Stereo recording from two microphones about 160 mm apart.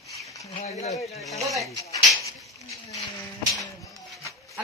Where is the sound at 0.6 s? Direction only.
40° left (ahead or behind).